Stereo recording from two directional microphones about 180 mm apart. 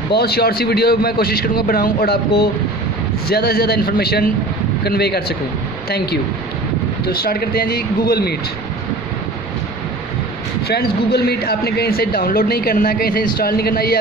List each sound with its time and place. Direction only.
0.1 s speech: 60° left (ahead or behind)
10.7 s speech: 60° left (ahead or behind)